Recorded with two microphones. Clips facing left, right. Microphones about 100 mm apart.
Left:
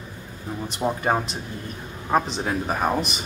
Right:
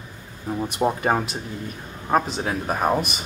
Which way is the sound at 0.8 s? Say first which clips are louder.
Even; 5° right (ahead or behind).